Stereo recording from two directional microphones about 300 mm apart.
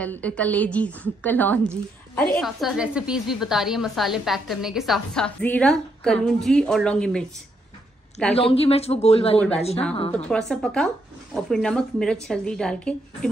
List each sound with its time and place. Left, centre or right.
0.0 s a woman's voice: centre
8.4 s a man's voice: centre
10.1 s a woman's voice: centre